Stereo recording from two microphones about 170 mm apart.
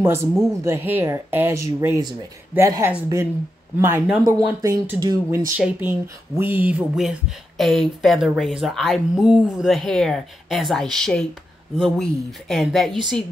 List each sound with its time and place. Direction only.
0.0 s speech: 15° right (ahead or behind); by 12.9 s centre (ahead or behind)